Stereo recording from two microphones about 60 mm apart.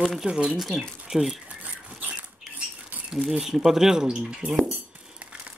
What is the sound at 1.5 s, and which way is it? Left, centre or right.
Dog, right.